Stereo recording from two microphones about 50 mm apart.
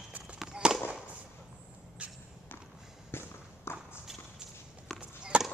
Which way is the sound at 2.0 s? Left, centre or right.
Right.